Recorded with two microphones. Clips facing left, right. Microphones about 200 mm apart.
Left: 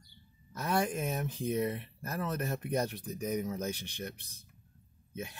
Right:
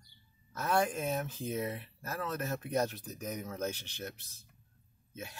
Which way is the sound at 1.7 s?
15° left (ahead or behind).